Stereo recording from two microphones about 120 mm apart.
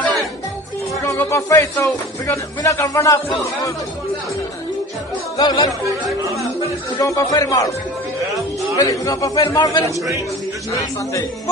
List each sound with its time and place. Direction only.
1.0 s a man's voice: 25° left (ahead or behind)
5.4 s music: 35° left (ahead or behind)
7.0 s a man's voice: 30° left (ahead or behind)
8.7 s a man's voice: 30° left (ahead or behind)
9.8 s a man's voice: 25° right (ahead or behind)
10.8 s a man's voice: 25° left (ahead or behind)